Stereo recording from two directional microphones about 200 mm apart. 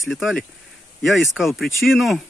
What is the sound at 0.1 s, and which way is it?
Speech, centre (ahead or behind).